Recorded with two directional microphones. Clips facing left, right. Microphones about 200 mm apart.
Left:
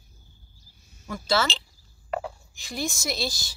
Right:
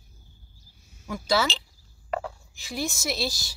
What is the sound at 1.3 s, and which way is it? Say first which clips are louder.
Speech: even; 10° right (ahead or behind).